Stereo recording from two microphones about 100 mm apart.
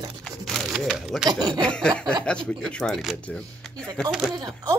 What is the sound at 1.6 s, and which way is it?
Speech, 10° left (ahead or behind).